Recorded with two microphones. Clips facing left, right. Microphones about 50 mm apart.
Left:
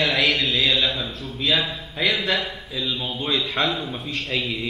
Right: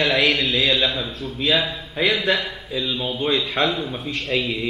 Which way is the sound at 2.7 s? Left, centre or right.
Centre.